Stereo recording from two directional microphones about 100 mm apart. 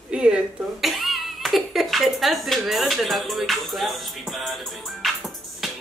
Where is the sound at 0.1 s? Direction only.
10° right (ahead or behind).